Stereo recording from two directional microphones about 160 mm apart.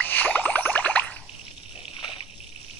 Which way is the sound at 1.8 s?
35° left (ahead or behind).